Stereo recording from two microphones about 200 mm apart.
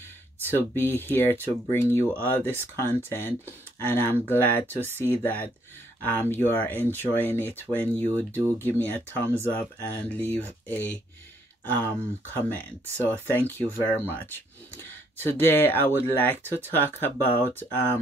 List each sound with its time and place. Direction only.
0.5 s speech: 10° left (ahead or behind)